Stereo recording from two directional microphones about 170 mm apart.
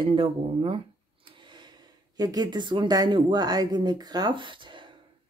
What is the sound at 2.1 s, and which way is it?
Speech, 25° right (ahead or behind).